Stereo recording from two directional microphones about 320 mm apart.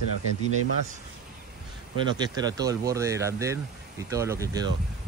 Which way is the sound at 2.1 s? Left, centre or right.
Centre.